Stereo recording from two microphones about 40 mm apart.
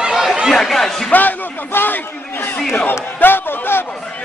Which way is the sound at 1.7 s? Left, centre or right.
Left.